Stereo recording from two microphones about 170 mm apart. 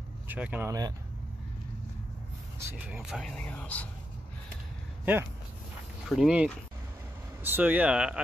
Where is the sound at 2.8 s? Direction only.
5° right (ahead or behind).